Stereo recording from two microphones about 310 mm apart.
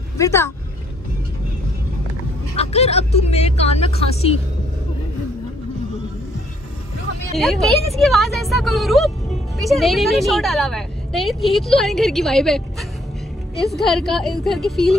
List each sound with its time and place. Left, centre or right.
0.2 s speech: centre
2.5 s speech: centre
7.3 s a woman's voice: centre
13.7 s a woman's voice: centre